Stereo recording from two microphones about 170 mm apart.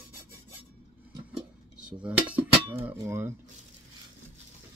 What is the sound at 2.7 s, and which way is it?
Filing, 10° right (ahead or behind).